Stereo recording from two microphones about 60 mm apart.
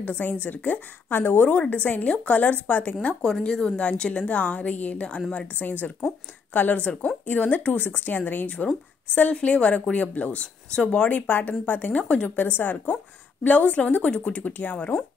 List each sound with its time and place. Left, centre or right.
0.0 s speech: left
1.5 s speech: left
3.2 s a woman's voice: centre
12.4 s a woman's voice: left